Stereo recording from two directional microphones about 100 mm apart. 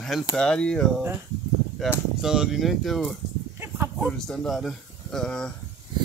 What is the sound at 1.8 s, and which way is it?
Speech, centre (ahead or behind).